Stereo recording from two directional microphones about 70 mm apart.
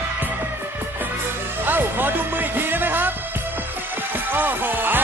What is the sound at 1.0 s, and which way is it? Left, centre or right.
Music, right.